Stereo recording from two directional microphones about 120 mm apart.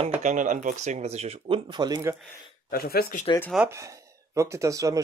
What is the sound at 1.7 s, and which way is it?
Speech, 40° right (ahead or behind).